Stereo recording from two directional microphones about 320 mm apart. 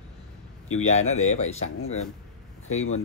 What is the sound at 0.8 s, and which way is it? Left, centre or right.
Speech, left.